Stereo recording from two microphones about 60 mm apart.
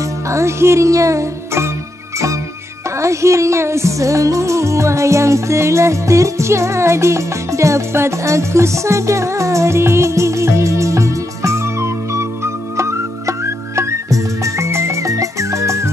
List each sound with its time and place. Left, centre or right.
0.3 s music: right
3.0 s music: right
13.7 s music: right